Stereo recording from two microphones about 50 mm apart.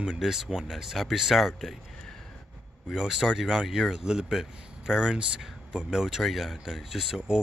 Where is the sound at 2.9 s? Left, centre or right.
Centre.